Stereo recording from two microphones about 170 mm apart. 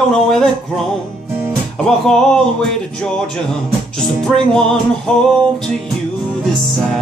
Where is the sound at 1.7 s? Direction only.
5° left (ahead or behind).